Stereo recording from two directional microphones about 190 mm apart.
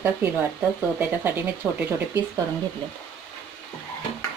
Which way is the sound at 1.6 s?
5° right (ahead or behind).